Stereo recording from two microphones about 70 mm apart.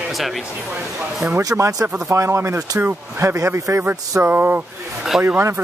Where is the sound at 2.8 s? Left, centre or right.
Right.